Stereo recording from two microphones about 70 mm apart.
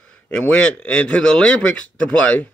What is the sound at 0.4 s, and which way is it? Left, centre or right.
Speech, left.